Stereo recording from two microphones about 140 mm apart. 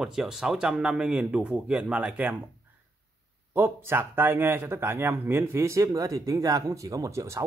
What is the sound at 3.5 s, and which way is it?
Speech, 15° right (ahead or behind).